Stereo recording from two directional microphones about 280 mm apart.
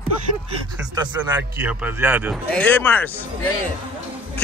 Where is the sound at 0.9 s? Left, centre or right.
Centre.